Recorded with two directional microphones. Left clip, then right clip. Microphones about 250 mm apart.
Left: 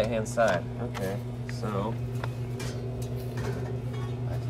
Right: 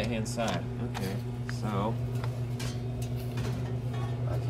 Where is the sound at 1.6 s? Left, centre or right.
Centre.